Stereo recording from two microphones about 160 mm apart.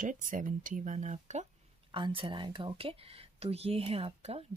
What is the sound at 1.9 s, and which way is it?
Speech, 35° right (ahead or behind).